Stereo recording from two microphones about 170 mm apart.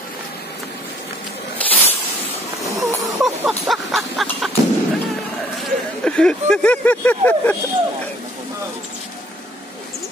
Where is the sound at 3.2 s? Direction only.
Centre (ahead or behind).